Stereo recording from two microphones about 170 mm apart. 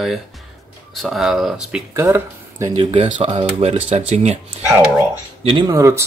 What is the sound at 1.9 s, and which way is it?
Speech, 15° right (ahead or behind).